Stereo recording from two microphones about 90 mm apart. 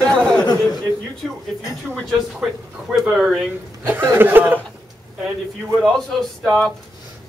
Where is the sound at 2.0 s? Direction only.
5° right (ahead or behind).